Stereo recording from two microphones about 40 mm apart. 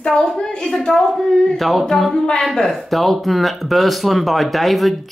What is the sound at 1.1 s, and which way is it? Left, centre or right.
Speech, centre.